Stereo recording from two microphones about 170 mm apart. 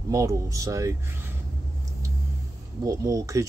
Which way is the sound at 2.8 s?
20° right (ahead or behind).